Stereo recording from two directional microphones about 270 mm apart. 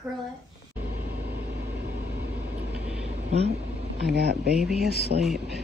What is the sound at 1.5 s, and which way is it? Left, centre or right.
Vehicle, right.